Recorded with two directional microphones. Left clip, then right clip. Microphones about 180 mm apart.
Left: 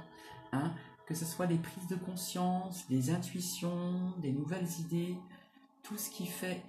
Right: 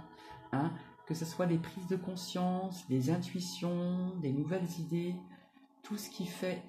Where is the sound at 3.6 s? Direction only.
25° right (ahead or behind).